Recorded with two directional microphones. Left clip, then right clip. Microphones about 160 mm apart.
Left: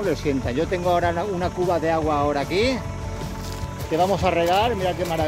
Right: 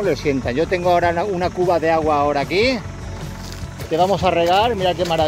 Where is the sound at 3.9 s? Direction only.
20° right (ahead or behind).